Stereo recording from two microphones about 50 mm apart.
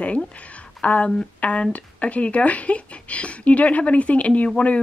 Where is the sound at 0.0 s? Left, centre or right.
Left.